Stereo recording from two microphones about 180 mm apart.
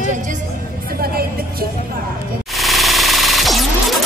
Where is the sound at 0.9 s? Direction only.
55° right (ahead or behind).